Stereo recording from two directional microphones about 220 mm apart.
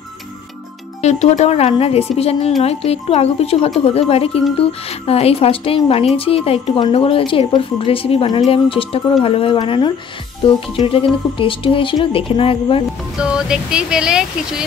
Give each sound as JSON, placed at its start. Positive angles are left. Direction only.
{"t": 1.0, "sound": "speech", "side_deg": 30}
{"t": 13.2, "sound": "speech", "side_deg": -5}